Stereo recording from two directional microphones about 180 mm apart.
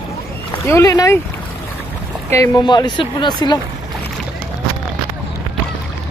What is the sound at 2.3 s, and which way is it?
Speech, 20° left (ahead or behind).